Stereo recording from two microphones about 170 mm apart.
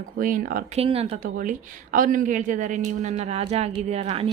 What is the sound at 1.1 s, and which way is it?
A woman's voice, 50° right (ahead or behind).